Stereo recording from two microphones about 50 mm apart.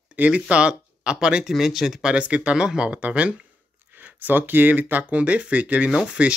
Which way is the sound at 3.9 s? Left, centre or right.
Right.